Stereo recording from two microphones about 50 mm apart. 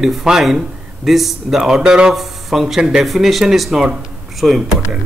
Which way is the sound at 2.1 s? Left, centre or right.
Centre.